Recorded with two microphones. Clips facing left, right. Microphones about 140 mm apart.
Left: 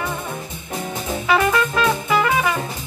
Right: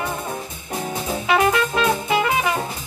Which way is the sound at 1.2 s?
25° right (ahead or behind).